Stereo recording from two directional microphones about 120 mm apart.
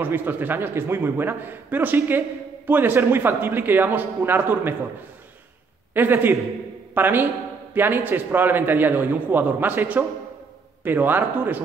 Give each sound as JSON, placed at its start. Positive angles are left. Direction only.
{"t": 0.0, "sound": "a man's voice", "side_deg": -15}
{"t": 5.9, "sound": "a man's voice", "side_deg": -15}